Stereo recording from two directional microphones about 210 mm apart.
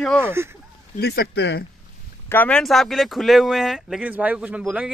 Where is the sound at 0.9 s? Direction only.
50° left (ahead or behind).